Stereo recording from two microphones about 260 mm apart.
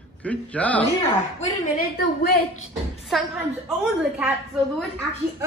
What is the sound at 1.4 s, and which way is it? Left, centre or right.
A woman's voice, left.